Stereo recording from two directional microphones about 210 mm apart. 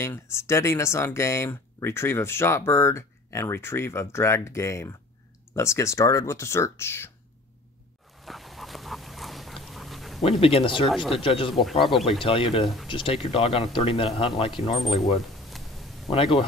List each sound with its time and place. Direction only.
0.0 s speech: 15° left (ahead or behind)
8.2 s dog: centre (ahead or behind)
10.4 s speech: 25° left (ahead or behind)
15.4 s a sound: centre (ahead or behind)
16.1 s speech: 25° left (ahead or behind)